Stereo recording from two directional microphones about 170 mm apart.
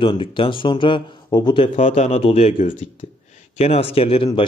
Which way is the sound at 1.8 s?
40° left (ahead or behind).